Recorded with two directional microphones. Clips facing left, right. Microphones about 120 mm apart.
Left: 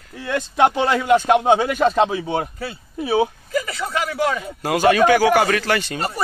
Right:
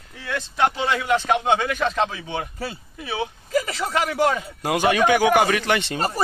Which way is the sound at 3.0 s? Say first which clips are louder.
Left 9 dB; 35° left (ahead or behind).